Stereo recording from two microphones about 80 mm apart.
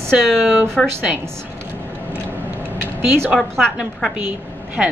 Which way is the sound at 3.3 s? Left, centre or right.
Centre.